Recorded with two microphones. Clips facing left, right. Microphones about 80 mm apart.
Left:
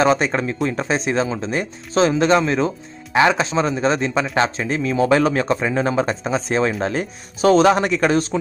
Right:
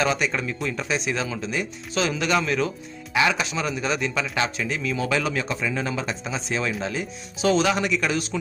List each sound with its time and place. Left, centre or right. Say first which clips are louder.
0.0 s speech: left 7 dB; left